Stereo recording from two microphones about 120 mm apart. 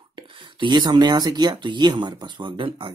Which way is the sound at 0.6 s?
40° right (ahead or behind).